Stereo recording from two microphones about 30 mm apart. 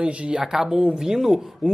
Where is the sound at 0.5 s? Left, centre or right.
Centre.